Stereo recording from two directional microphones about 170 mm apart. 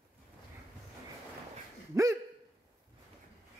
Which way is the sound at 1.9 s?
15° right (ahead or behind).